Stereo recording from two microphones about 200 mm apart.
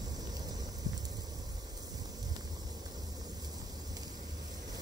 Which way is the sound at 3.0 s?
20° right (ahead or behind).